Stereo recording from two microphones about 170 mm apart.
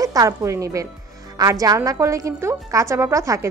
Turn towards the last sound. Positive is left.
turn(degrees=-20)  # may be behind; listen again after turning